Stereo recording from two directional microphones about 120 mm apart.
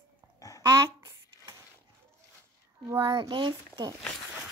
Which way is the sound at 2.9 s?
45° right (ahead or behind).